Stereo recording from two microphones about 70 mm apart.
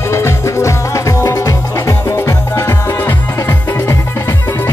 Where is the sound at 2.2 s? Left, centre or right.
Left.